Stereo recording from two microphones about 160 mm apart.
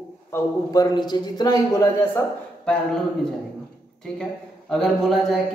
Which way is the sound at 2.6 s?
5° left (ahead or behind).